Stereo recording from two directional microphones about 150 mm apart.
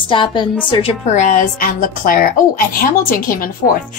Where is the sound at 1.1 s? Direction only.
55° left (ahead or behind); by 3.3 s 75° left (ahead or behind).